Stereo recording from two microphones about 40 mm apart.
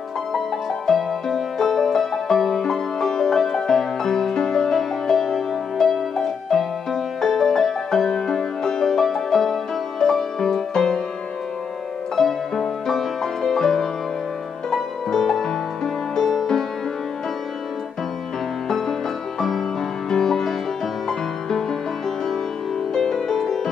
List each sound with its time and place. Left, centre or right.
0.8 s music: centre
12.2 s music: centre
18.7 s music: centre
20.1 s music: centre
22.9 s music: centre